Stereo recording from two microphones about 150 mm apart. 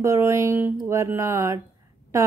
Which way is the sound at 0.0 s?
20° right (ahead or behind).